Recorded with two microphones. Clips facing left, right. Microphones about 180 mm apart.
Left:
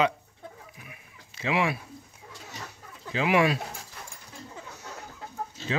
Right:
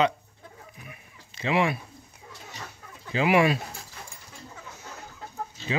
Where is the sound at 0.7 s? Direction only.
5° left (ahead or behind).